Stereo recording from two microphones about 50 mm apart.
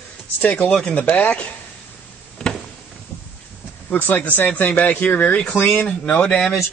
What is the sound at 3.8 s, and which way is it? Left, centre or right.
Speech, left.